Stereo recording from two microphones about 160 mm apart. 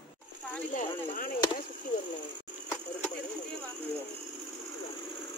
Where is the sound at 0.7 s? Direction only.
55° left (ahead or behind).